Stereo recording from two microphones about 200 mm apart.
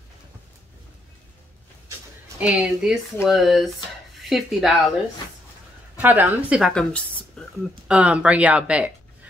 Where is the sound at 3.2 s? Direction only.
Centre (ahead or behind).